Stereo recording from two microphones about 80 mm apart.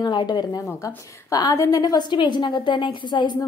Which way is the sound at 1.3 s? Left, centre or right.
Left.